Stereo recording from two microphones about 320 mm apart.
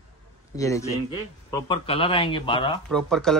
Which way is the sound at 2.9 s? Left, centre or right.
Centre.